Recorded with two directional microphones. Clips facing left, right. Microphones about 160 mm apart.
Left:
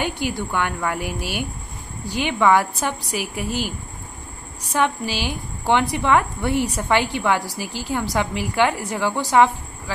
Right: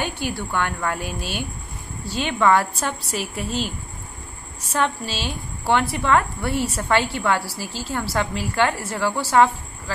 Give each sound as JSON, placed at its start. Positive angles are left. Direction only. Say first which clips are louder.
{"t": 0.0, "sound": "a woman's voice", "louder": "left 2 dB", "side_deg": 15}
{"t": 4.7, "sound": "a woman's voice", "louder": "left 2 dB", "side_deg": 15}